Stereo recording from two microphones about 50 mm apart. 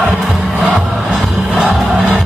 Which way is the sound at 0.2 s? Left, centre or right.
Centre.